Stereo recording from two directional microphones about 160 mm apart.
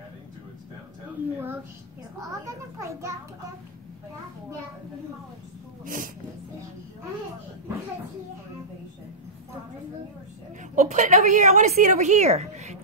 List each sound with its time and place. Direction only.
2.4 s a child's voice: 20° right (ahead or behind)
10.8 s a woman's voice: 50° right (ahead or behind)